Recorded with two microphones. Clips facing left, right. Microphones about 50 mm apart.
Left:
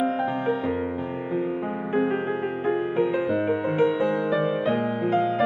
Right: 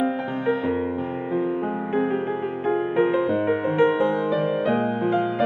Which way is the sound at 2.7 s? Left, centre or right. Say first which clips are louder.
Right 3 dB; right.